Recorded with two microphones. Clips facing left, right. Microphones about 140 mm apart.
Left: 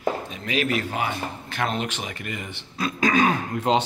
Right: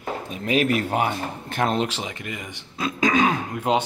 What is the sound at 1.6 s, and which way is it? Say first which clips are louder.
Speech: right 4 dB; 35° right (ahead or behind).